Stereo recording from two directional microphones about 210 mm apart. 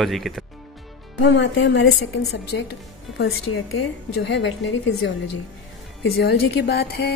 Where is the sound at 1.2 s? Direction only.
60° left (ahead or behind).